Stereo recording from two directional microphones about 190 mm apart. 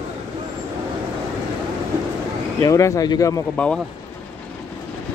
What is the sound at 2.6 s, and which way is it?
Speech, 15° left (ahead or behind).